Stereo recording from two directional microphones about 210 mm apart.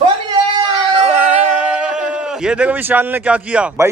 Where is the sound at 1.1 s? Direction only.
5° right (ahead or behind).